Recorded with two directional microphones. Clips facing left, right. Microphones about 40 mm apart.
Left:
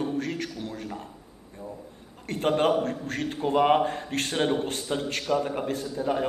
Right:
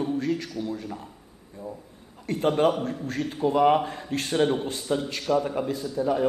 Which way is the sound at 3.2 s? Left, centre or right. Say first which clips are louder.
Right 1 dB; left.